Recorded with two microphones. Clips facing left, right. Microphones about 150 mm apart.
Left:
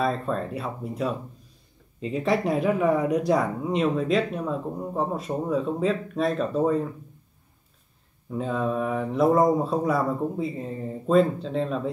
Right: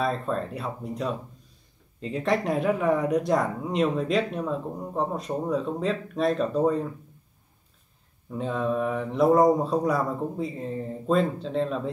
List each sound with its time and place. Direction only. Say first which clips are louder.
0.0 s speech: left 1 dB; centre (ahead or behind)
8.3 s speech: left 1 dB; centre (ahead or behind)